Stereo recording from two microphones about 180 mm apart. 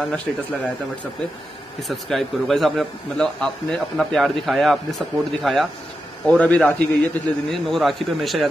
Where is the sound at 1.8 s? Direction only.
Centre (ahead or behind).